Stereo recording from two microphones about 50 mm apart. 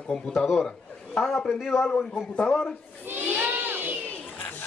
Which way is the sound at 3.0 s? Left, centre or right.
Right.